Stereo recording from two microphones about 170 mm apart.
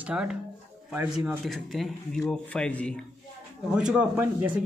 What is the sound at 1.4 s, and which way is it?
Speech, centre (ahead or behind).